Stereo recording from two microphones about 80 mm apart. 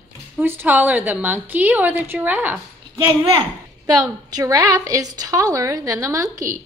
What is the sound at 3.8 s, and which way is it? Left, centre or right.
A woman's voice, right.